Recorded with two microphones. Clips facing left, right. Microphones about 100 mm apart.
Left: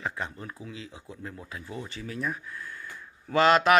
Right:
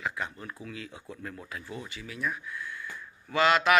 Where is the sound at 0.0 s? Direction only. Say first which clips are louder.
Even; 30° left (ahead or behind).